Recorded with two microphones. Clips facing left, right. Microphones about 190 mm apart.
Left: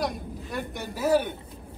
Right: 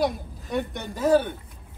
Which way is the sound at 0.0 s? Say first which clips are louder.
Right 5 dB; centre (ahead or behind).